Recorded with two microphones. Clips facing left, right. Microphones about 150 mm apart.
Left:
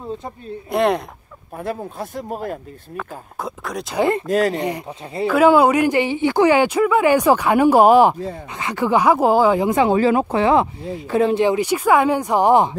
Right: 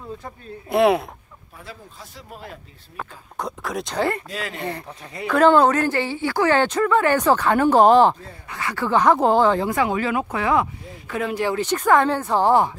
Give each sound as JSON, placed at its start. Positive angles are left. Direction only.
{"t": 0.7, "sound": "speech", "side_deg": 0}
{"t": 1.5, "sound": "speech", "side_deg": 55}
{"t": 3.3, "sound": "speech", "side_deg": 0}
{"t": 3.9, "sound": "speech", "side_deg": 15}
{"t": 4.3, "sound": "speech", "side_deg": 45}
{"t": 4.6, "sound": "speech", "side_deg": 15}
{"t": 4.8, "sound": "speech", "side_deg": 30}
{"t": 5.3, "sound": "speech", "side_deg": 10}
{"t": 9.7, "sound": "speech", "side_deg": 25}